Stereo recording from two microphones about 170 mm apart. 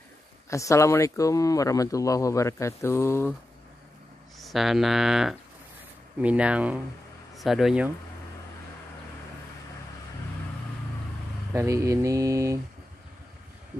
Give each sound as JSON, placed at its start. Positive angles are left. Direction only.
{"t": 0.5, "sound": "speech", "side_deg": 20}
{"t": 4.4, "sound": "speech", "side_deg": 0}
{"t": 11.5, "sound": "speech", "side_deg": -15}